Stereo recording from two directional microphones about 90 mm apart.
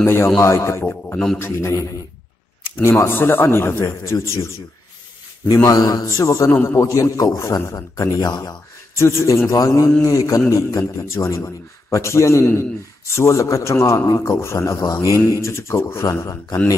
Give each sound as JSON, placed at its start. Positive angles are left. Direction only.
{"t": 0.0, "sound": "a man's voice", "side_deg": 30}
{"t": 1.1, "sound": "a man's voice", "side_deg": 5}
{"t": 1.4, "sound": "a man's voice", "side_deg": 30}
{"t": 6.5, "sound": "a man's voice", "side_deg": 25}
{"t": 8.9, "sound": "a man's voice", "side_deg": 30}
{"t": 15.1, "sound": "speech", "side_deg": -25}
{"t": 15.4, "sound": "a man's voice", "side_deg": 30}